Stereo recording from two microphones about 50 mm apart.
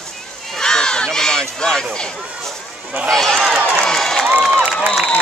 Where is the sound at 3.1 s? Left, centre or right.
Centre.